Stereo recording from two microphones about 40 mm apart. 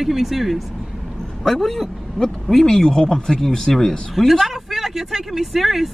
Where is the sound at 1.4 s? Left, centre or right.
Centre.